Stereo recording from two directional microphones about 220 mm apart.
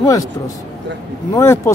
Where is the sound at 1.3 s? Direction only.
10° left (ahead or behind).